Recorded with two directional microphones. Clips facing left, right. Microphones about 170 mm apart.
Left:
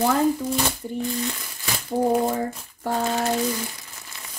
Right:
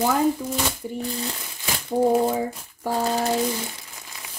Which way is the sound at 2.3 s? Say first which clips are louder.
Right 1 dB; 10° right (ahead or behind).